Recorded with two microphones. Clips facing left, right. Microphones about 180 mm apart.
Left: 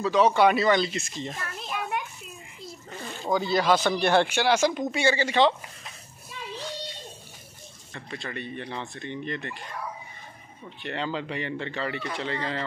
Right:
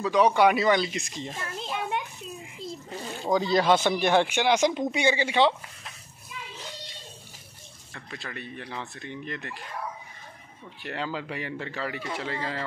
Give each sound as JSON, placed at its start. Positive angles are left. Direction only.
{"t": 0.0, "sound": "speech", "side_deg": -15}
{"t": 1.5, "sound": "a sound", "side_deg": -25}
{"t": 2.9, "sound": "a sound", "side_deg": -10}
{"t": 3.5, "sound": "speech", "side_deg": -25}
{"t": 3.9, "sound": "speech", "side_deg": -10}
{"t": 7.9, "sound": "a man's voice", "side_deg": 0}
{"t": 10.8, "sound": "a man's voice", "side_deg": -5}